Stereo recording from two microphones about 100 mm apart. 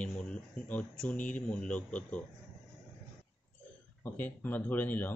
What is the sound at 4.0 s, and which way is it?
Speech, 20° left (ahead or behind).